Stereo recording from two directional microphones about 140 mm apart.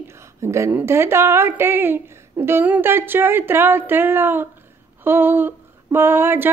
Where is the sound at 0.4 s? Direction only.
20° right (ahead or behind).